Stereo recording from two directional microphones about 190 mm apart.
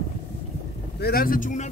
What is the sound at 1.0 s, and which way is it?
Speech, 55° left (ahead or behind).